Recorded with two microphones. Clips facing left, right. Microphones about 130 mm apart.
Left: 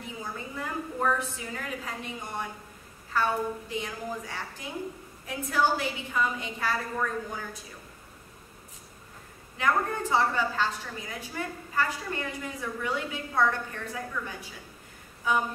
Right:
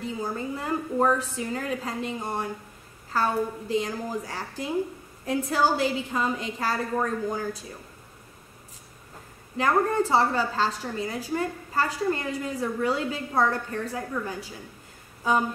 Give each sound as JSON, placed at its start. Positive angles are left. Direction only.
{"t": 0.0, "sound": "a woman's voice", "side_deg": -35}
{"t": 9.6, "sound": "a woman's voice", "side_deg": -35}